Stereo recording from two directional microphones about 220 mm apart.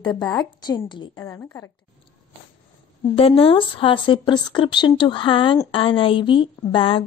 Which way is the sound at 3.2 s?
25° left (ahead or behind).